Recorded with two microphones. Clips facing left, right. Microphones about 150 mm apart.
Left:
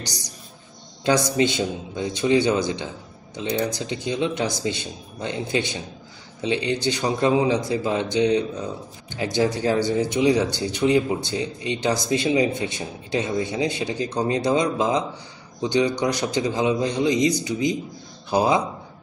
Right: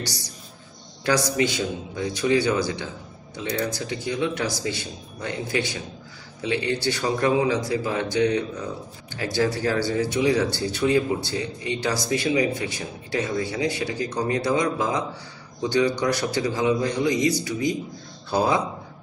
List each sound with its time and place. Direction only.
1.0 s speech: 20° left (ahead or behind)